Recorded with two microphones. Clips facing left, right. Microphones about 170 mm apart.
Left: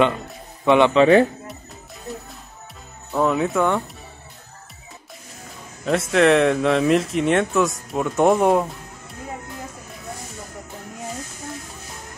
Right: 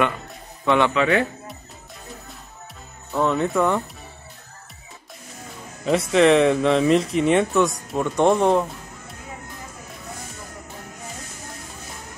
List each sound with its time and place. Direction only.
0.7 s a man's voice: 20° left (ahead or behind)
0.9 s speech: 30° left (ahead or behind)
3.1 s speech: 5° left (ahead or behind)
5.9 s speech: centre (ahead or behind)